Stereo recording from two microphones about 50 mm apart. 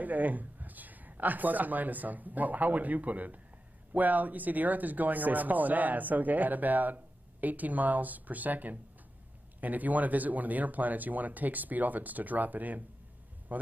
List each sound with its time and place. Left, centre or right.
0.0 s speech: right